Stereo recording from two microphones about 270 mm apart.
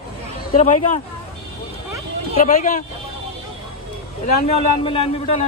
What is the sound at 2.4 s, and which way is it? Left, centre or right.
Speech, left.